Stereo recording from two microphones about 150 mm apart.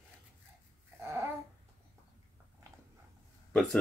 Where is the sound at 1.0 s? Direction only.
15° right (ahead or behind).